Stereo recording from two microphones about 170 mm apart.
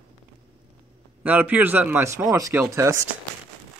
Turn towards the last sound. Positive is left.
turn(degrees=-15)  # may be behind; listen again after turning